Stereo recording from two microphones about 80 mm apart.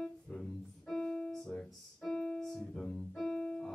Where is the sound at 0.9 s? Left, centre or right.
Centre.